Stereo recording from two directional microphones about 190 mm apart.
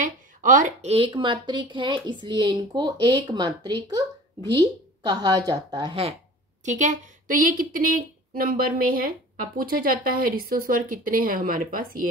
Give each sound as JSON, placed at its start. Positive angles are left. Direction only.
{"t": 0.0, "sound": "a woman's voice", "side_deg": -45}
{"t": 6.6, "sound": "speech", "side_deg": -40}